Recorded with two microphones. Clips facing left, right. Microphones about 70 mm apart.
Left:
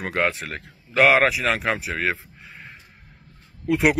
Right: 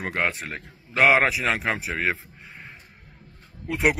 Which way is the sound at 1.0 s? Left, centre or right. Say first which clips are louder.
Left 1 dB; right.